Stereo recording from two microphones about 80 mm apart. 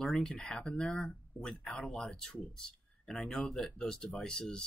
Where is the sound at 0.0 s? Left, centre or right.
Centre.